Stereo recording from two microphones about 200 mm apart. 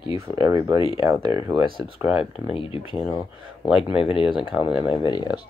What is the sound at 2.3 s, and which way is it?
Speech, 30° left (ahead or behind).